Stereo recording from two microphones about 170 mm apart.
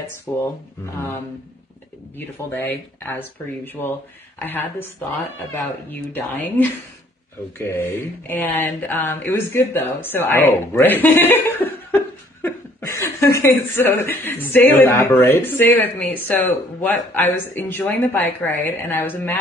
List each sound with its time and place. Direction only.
0.3 s speech: 15° left (ahead or behind)
2.7 s speech: 10° left (ahead or behind)